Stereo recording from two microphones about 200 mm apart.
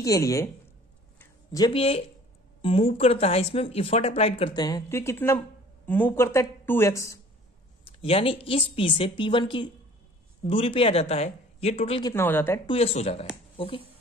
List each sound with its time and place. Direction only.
0.0 s a woman's voice: 15° left (ahead or behind)
1.2 s a sound: 20° left (ahead or behind)
2.6 s a woman's voice: 30° left (ahead or behind)
7.8 s speech: 30° left (ahead or behind)
12.1 s a woman's voice: 10° left (ahead or behind)
12.6 s speech: 30° left (ahead or behind)